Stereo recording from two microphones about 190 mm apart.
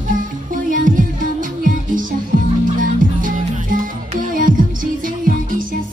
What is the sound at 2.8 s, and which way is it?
Music, 45° right (ahead or behind).